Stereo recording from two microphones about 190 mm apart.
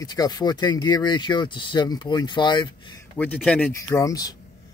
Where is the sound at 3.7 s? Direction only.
15° left (ahead or behind).